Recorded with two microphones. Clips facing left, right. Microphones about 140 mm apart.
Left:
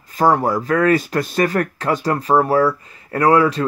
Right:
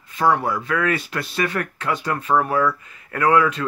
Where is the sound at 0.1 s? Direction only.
40° left (ahead or behind).